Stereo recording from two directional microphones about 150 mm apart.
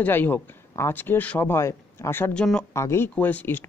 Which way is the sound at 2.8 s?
15° left (ahead or behind).